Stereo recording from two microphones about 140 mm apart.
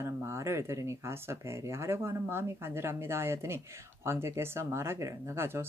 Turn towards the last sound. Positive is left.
turn(degrees=-15)  # may be behind; listen again after turning